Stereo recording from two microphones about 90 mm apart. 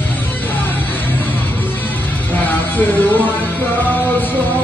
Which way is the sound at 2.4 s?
20° left (ahead or behind).